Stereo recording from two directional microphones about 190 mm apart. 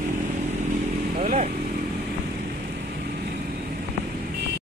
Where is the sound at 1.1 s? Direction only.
40° right (ahead or behind).